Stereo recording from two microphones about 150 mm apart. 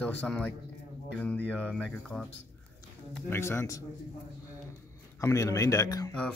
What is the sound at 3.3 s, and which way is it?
Speech, 20° left (ahead or behind).